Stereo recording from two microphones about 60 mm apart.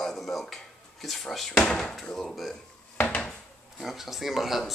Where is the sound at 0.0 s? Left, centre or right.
Centre.